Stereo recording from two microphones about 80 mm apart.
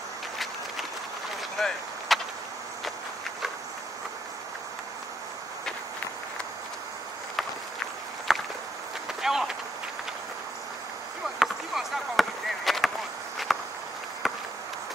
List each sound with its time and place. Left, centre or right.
1.6 s speech: centre
2.1 s a sound: centre
8.3 s walk: centre
9.2 s vehicle: centre
11.3 s chop: centre
13.5 s walk: centre
14.2 s run: centre